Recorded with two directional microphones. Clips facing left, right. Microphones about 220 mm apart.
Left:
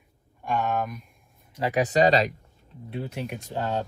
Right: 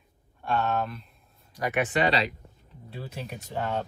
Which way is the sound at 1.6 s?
35° left (ahead or behind).